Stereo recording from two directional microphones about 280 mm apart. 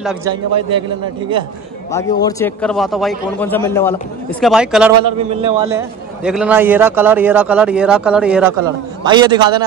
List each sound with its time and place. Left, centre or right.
0.0 s a man's voice: centre
0.3 s a man's voice: centre
1.9 s a man's voice: centre
5.0 s a man's voice: centre
9.0 s a man's voice: centre